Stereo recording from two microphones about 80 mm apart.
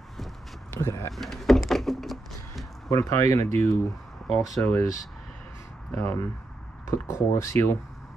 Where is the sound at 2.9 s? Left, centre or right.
Left.